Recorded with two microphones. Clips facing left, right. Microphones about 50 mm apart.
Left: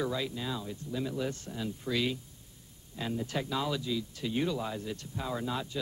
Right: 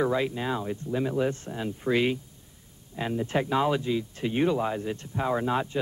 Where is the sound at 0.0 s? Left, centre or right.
Right.